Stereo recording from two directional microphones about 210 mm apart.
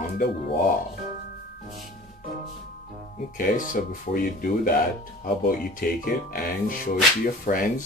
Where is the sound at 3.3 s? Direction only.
40° left (ahead or behind).